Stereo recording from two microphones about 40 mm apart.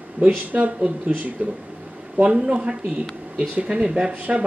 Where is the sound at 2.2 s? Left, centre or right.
Right.